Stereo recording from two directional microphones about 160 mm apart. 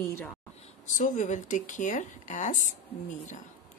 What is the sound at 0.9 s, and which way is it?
A woman's voice, 50° left (ahead or behind).